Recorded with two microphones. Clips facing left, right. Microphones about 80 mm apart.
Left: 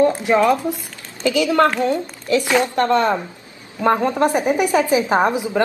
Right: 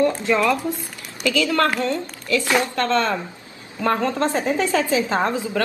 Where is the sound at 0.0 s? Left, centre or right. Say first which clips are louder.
Left 4 dB; left.